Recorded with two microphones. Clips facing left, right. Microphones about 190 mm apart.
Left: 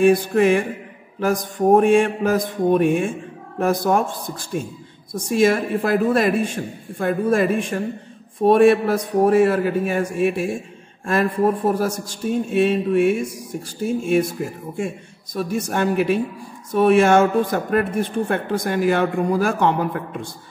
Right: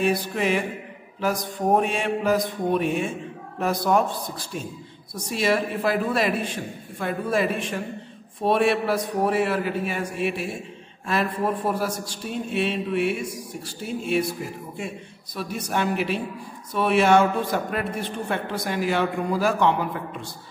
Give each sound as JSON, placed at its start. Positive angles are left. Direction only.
{"t": 0.0, "sound": "speech", "side_deg": 50}
{"t": 15.3, "sound": "speech", "side_deg": 45}